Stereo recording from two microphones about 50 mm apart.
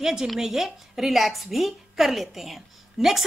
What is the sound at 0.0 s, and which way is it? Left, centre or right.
A woman's voice, centre.